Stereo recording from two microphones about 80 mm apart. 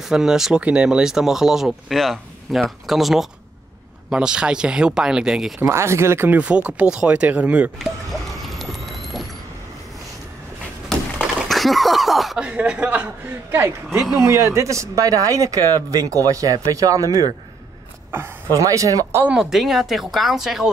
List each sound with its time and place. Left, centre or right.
0.0 s speech: centre
5.6 s speech: right
6.4 s speech: centre
7.8 s a sound: centre
11.1 s a sound: centre
12.4 s speech: centre
14.2 s speech: right
18.1 s speech: right
18.5 s speech: right
19.2 s speech: centre